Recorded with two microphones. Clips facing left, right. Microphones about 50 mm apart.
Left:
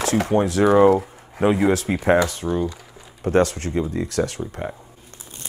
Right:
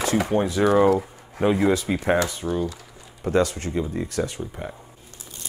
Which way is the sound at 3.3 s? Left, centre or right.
Left.